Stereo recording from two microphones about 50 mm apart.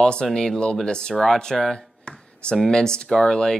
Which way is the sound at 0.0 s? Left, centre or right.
Centre.